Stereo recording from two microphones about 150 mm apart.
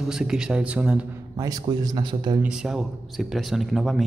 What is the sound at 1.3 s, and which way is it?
A man's voice, 25° right (ahead or behind).